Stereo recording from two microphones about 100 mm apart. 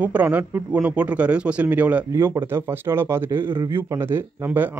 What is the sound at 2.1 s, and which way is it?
A man's voice, 30° right (ahead or behind).